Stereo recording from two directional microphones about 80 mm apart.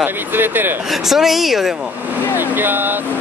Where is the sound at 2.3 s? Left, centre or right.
Right.